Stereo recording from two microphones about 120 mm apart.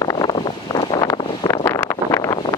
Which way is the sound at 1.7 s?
25° left (ahead or behind).